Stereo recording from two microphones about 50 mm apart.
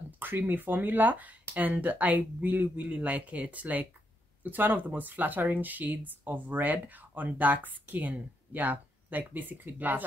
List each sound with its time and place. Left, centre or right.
0.2 s speech: right